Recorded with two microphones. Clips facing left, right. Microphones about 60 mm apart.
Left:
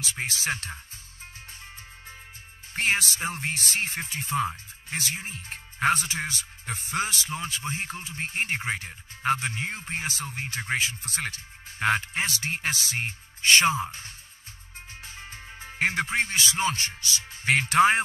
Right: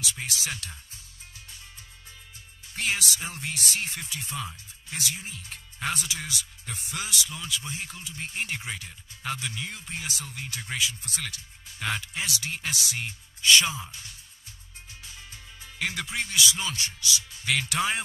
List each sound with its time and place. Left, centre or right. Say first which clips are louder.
0.0 s speech: left 3 dB; left
2.7 s speech: left 4 dB; left